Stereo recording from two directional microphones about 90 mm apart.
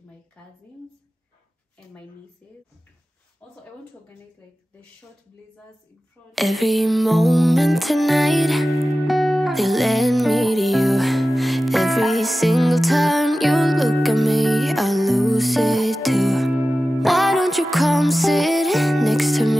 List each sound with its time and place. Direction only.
6.3 s music: centre (ahead or behind)